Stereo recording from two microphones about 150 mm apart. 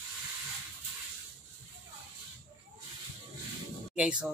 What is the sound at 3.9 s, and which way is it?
Speech, 5° right (ahead or behind).